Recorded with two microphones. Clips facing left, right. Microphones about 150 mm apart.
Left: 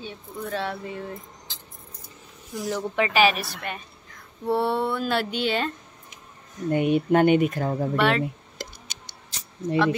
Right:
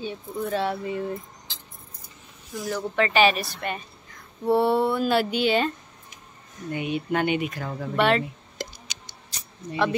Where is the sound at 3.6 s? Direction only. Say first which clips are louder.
Right 3 dB; centre (ahead or behind).